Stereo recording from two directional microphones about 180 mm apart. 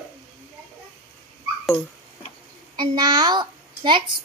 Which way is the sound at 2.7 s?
25° right (ahead or behind).